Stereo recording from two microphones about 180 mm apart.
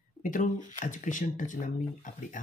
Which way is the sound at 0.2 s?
45° left (ahead or behind).